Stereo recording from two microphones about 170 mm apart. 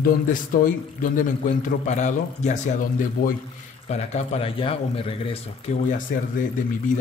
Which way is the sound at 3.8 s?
40° left (ahead or behind).